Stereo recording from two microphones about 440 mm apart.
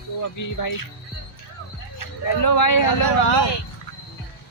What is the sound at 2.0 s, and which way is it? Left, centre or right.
Speech, left.